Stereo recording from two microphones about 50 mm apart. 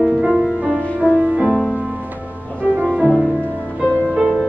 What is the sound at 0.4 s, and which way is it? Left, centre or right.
Music, right.